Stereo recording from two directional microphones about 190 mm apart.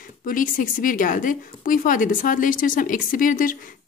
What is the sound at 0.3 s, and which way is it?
Speech, 45° left (ahead or behind).